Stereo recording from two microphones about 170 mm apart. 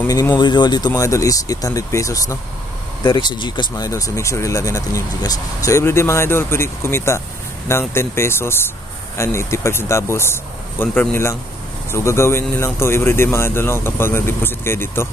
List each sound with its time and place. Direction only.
0.0 s speech: 20° left (ahead or behind)